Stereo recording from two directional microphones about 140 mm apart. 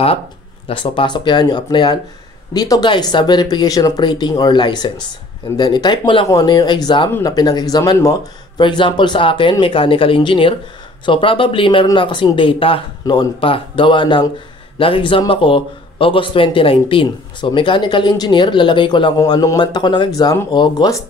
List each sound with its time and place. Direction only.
0.7 s speech: 40° left (ahead or behind)